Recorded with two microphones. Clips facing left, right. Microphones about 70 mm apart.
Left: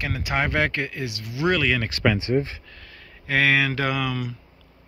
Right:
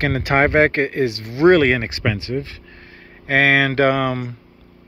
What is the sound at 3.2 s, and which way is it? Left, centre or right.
Speech, right.